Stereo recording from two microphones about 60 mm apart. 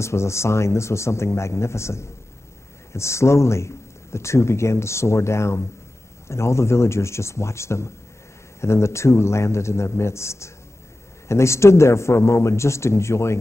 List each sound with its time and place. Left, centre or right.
0.0 s a man's voice: left